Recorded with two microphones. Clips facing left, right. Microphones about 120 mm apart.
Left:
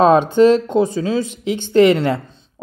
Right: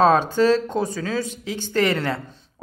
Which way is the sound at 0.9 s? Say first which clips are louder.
Left 6 dB; 20° left (ahead or behind).